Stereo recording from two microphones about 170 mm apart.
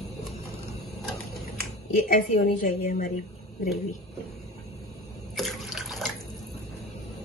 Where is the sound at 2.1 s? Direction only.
55° left (ahead or behind).